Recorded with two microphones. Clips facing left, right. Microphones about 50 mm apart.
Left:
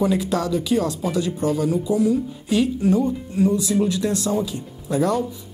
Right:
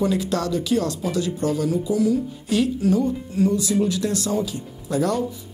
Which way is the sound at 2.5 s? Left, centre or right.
Centre.